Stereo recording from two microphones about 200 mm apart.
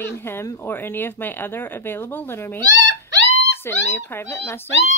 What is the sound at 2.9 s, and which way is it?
Wail, 60° left (ahead or behind).